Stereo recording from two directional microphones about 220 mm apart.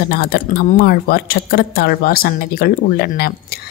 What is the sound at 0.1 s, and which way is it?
Speech, 45° left (ahead or behind).